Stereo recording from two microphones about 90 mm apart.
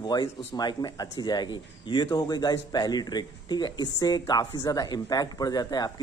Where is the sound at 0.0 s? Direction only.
50° left (ahead or behind).